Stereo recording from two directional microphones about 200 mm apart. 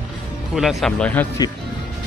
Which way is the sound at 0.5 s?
Centre (ahead or behind).